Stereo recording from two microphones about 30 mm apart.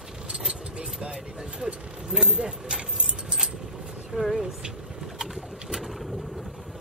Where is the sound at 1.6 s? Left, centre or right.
Centre.